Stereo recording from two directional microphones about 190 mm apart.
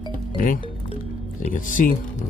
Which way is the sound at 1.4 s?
45° left (ahead or behind).